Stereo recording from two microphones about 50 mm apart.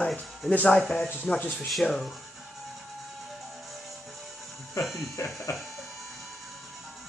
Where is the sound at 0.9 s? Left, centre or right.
Left.